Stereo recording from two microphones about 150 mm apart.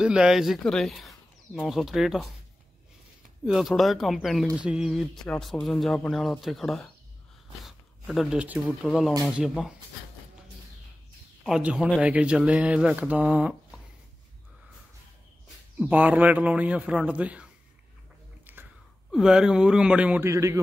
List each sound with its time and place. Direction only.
0.0 s speech: 5° right (ahead or behind)
3.4 s speech: centre (ahead or behind)
11.4 s speech: 5° right (ahead or behind)
15.8 s speech: 10° right (ahead or behind)
19.1 s speech: 5° right (ahead or behind)
20.2 s speech: 20° right (ahead or behind)